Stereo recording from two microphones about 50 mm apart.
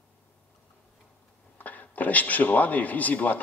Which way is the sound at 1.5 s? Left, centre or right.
Left.